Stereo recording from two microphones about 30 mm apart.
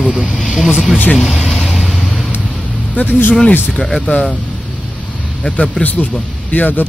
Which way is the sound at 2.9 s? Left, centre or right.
Left.